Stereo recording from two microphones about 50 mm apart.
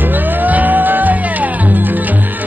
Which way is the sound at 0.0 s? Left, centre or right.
Right.